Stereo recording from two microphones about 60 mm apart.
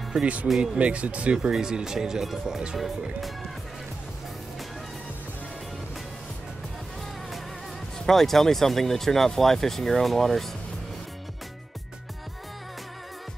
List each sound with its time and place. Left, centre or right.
0.1 s speech: right; by 2.6 s centre
8.1 s speech: centre